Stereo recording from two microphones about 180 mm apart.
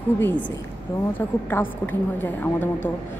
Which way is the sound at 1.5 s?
10° left (ahead or behind).